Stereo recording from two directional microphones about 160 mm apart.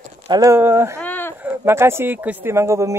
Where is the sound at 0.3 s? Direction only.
20° right (ahead or behind).